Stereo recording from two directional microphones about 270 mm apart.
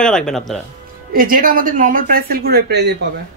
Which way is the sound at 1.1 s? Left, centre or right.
Right.